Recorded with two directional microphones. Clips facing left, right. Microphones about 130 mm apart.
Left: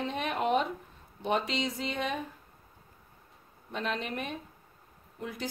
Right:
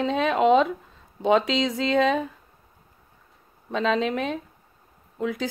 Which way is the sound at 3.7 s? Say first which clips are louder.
Right 11 dB; 90° right.